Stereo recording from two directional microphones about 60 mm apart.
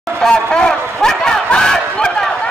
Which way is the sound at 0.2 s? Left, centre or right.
Centre.